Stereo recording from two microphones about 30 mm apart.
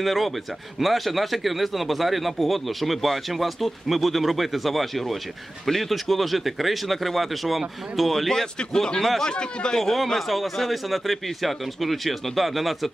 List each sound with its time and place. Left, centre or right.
0.0 s a man's voice: centre
6.0 s a man's voice: centre
8.7 s speech: left
9.8 s a man's voice: centre